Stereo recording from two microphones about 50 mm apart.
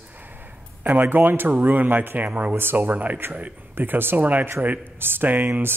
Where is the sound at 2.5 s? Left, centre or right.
Right.